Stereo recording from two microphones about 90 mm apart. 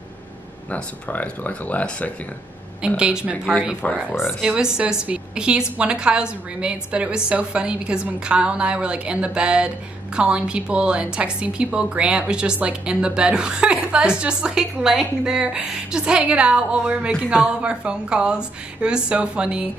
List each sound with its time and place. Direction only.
0.7 s speech: 15° left (ahead or behind)
3.0 s a woman's voice: 10° right (ahead or behind)
3.8 s speech: 15° left (ahead or behind)
4.7 s a woman's voice: 10° right (ahead or behind)